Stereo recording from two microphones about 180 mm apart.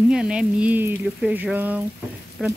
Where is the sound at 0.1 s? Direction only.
5° right (ahead or behind).